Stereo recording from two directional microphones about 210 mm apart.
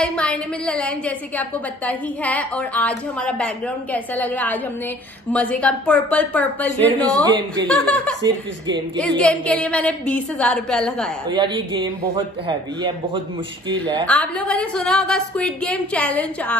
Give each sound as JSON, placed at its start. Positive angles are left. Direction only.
{"t": 0.0, "sound": "a woman's voice", "side_deg": 5}
{"t": 7.2, "sound": "speech", "side_deg": -20}
{"t": 7.7, "sound": "a woman's voice", "side_deg": 5}
{"t": 11.2, "sound": "a man's voice", "side_deg": -20}
{"t": 14.0, "sound": "a woman's voice", "side_deg": 5}